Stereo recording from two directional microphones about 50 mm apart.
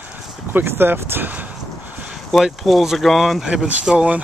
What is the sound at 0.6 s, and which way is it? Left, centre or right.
Speech, right.